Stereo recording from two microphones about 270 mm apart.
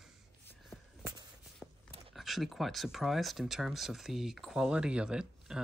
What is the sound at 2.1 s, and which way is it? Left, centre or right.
Speech, centre.